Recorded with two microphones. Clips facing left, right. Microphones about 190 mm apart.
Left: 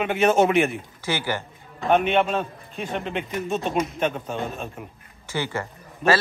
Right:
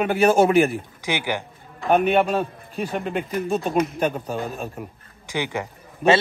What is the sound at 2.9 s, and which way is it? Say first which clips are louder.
Speech: right 1 dB; 40° right (ahead or behind).